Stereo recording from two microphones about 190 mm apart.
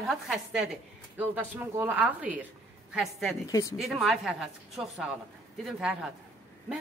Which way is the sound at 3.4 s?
15° left (ahead or behind).